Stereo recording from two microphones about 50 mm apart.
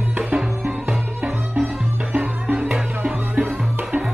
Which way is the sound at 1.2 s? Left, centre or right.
Right.